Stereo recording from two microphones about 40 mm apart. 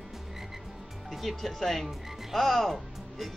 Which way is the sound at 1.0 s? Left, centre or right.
Centre.